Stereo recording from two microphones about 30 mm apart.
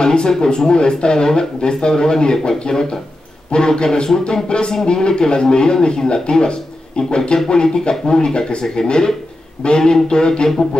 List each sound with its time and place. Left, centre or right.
0.0 s speech: left